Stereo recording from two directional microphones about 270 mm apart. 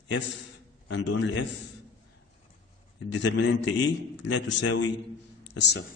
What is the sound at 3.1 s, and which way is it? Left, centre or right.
A man's voice, left.